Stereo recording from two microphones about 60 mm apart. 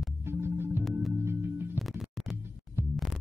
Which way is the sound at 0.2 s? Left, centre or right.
Right.